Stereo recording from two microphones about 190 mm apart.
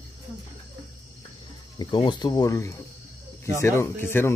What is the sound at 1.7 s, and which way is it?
Speech, 25° left (ahead or behind).